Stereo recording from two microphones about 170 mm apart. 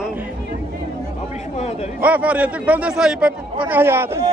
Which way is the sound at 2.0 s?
10° right (ahead or behind).